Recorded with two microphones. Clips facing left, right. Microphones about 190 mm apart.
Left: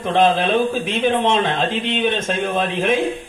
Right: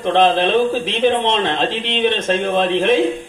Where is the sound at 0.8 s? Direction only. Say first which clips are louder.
Right 1 dB; 50° left (ahead or behind).